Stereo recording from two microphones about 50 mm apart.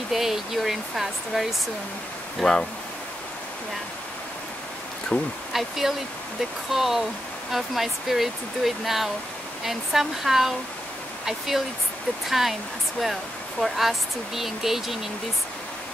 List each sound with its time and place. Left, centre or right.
0.1 s speech: centre
2.4 s speech: centre
5.1 s speech: left
5.5 s speech: centre